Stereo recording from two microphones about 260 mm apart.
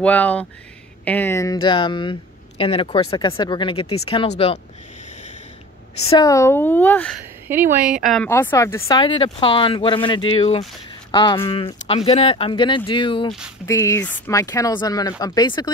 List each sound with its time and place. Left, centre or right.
0.0 s speech: centre; by 4.6 s left
6.0 s speech: centre
7.4 s speech: centre